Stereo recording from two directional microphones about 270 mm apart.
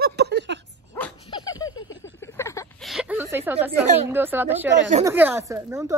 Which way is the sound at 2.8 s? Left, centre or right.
Centre.